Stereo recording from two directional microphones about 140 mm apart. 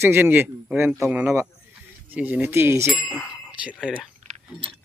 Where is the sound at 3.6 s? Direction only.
5° right (ahead or behind).